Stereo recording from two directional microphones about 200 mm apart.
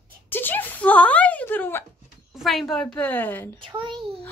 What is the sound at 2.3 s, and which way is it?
A woman's voice, centre (ahead or behind).